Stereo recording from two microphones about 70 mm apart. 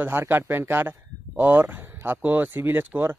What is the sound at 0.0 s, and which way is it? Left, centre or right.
Speech, right.